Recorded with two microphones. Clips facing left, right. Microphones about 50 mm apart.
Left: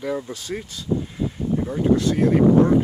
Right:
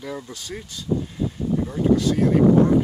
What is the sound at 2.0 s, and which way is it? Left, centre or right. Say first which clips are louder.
Speech: left 1 dB; left.